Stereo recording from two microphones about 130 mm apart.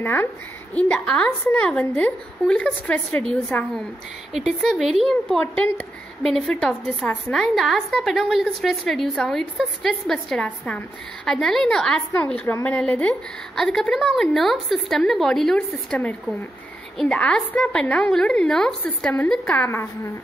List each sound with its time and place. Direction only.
0.0 s a woman's voice: 20° left (ahead or behind)